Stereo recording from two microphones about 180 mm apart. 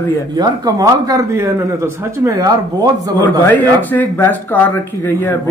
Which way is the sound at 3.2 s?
10° left (ahead or behind).